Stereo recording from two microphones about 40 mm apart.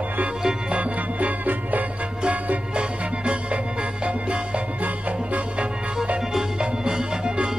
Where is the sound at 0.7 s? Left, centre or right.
Right.